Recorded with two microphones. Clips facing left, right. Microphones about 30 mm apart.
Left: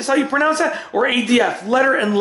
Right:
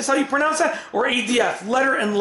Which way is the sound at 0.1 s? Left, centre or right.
Left.